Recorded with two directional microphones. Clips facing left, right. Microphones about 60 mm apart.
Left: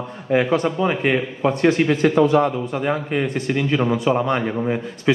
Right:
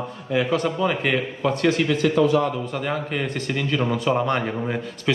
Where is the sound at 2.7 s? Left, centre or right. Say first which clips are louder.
Left 4 dB; centre.